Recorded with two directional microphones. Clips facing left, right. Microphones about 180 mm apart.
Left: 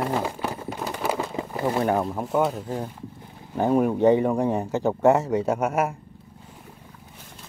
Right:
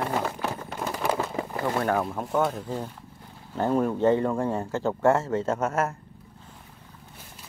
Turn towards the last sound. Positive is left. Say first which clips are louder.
# left 3 dB
turn(degrees=15)  # may be behind; listen again after turning